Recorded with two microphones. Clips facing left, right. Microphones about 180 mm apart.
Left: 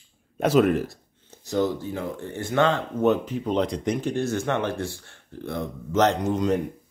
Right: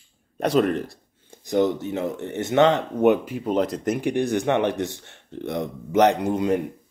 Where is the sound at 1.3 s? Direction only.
15° right (ahead or behind).